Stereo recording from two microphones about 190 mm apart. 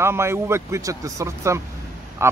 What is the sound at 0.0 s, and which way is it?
Speech, 15° right (ahead or behind).